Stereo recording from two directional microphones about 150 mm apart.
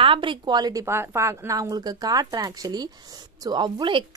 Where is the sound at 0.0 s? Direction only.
35° right (ahead or behind).